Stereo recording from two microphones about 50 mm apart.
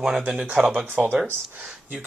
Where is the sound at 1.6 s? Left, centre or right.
Right.